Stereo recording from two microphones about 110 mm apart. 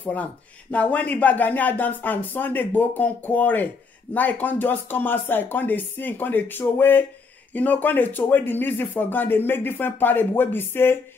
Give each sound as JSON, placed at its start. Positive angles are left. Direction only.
{"t": 0.0, "sound": "speech", "side_deg": 15}